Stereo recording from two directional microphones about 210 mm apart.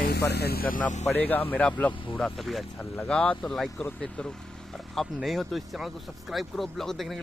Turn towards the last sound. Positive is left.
turn(degrees=0)  # may be behind; listen again after turning